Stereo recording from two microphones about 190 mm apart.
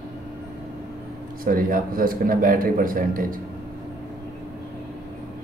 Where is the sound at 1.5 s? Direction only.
50° right (ahead or behind).